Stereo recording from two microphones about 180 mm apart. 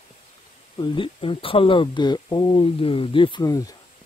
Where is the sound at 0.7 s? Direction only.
30° left (ahead or behind).